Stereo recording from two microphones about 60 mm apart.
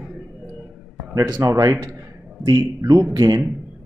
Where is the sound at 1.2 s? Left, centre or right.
Right.